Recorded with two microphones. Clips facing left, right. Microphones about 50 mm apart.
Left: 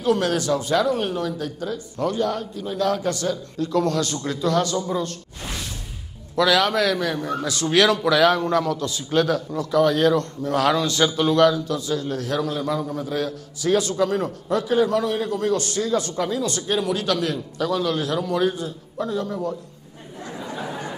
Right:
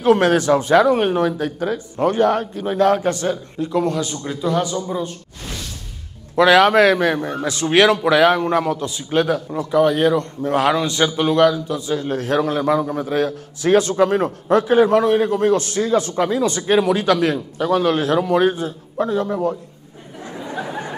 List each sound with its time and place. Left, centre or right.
0.0 s a man's voice: right; by 5.1 s centre
6.3 s a man's voice: right
7.2 s a man's voice: right
20.4 s a sound: right